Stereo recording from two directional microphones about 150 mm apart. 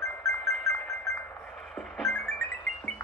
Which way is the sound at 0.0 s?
Centre (ahead or behind).